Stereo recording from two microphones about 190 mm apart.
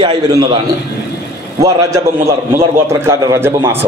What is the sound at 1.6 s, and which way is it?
A man's voice, 15° right (ahead or behind).